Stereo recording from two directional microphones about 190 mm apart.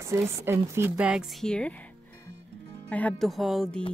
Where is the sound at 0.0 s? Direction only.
15° right (ahead or behind); by 1.9 s 5° left (ahead or behind).